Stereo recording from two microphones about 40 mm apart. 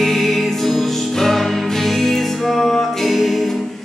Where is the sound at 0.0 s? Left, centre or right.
Centre.